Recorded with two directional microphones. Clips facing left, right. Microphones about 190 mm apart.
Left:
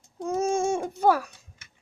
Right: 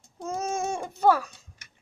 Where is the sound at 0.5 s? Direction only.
25° left (ahead or behind).